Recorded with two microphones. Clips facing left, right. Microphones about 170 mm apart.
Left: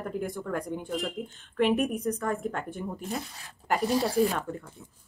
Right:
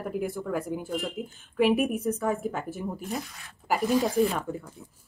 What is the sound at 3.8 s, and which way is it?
Speech, 35° left (ahead or behind).